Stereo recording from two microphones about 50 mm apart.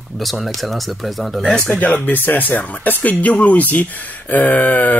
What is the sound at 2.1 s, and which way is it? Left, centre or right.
Speech, left.